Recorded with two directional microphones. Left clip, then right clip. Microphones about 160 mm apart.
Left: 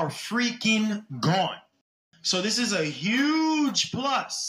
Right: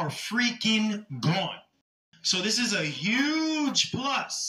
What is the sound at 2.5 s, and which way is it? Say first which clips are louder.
Speech: left 1 dB; 15° left (ahead or behind).